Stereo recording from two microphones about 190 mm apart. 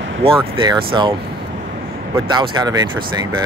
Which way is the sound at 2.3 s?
20° right (ahead or behind).